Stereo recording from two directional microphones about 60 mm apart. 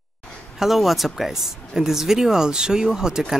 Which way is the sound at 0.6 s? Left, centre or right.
Centre.